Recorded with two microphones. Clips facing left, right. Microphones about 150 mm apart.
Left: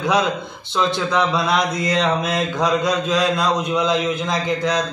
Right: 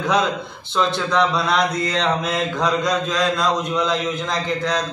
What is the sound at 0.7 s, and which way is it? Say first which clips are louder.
Speech: even; centre (ahead or behind).